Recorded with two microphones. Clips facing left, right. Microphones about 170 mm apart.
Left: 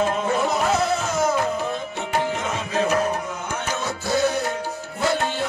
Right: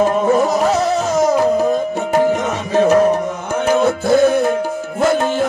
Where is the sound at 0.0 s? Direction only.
40° right (ahead or behind).